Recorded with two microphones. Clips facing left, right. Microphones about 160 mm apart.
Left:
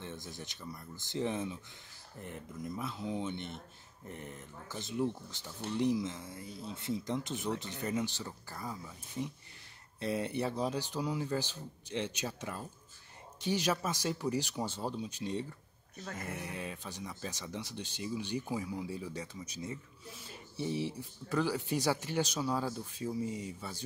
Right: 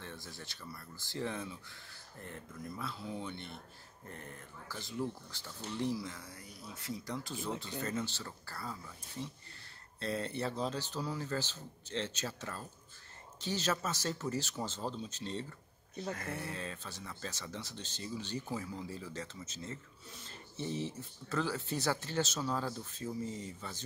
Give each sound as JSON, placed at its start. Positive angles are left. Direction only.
{"t": 0.0, "sound": "speech", "side_deg": 20}